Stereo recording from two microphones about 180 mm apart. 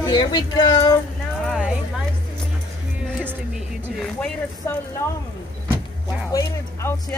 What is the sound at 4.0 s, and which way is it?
Speech, 5° left (ahead or behind).